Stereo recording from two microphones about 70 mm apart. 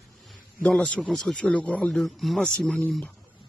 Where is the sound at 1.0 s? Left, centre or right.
Centre.